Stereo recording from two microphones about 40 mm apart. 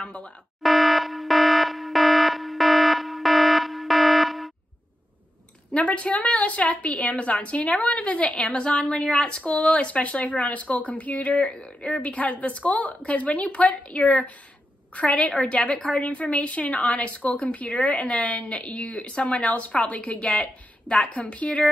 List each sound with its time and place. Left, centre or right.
0.0 s speech: left
0.6 s alarm: centre
5.7 s a woman's voice: left